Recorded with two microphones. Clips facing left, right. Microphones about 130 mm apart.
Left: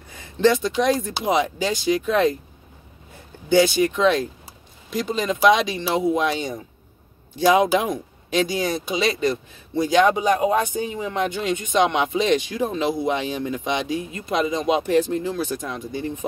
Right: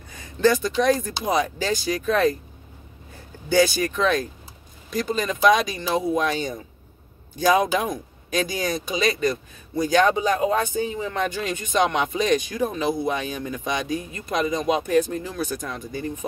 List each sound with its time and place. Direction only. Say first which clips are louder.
0.1 s speech: left 1 dB; 25° left (ahead or behind)
3.4 s speech: left 3 dB; 20° left (ahead or behind)